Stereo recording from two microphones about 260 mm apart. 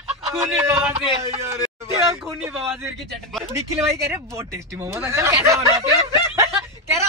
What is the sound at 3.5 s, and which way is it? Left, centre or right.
Speech, centre.